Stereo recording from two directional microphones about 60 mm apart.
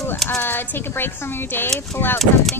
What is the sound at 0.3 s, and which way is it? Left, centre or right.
Speech, left.